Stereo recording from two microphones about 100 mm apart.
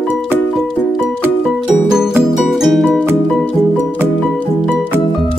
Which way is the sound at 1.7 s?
5° right (ahead or behind).